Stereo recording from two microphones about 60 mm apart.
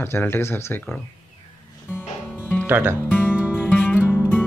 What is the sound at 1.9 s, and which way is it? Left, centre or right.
Music, left.